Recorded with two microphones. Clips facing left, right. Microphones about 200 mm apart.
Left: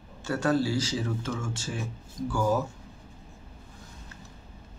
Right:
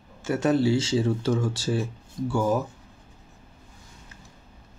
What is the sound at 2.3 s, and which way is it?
Speech, 20° right (ahead or behind).